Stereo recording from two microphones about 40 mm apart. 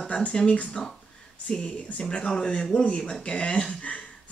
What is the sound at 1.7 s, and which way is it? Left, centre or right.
Speech, left.